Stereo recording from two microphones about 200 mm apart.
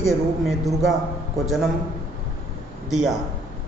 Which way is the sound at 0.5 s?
Centre (ahead or behind).